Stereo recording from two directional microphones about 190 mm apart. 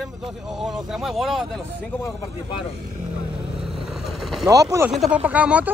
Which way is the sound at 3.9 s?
Centre (ahead or behind).